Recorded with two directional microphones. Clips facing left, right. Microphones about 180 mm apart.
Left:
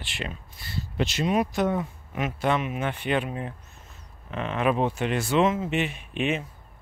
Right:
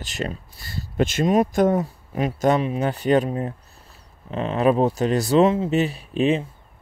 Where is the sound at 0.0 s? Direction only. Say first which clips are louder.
Right 7 dB; 40° right (ahead or behind).